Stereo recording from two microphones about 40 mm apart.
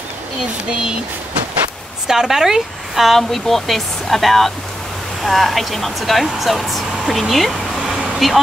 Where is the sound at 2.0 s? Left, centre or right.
Centre.